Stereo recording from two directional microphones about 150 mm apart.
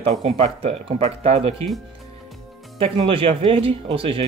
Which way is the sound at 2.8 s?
40° right (ahead or behind).